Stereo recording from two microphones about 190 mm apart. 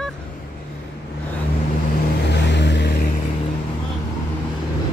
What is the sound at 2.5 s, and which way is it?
Vehicle, 65° left (ahead or behind).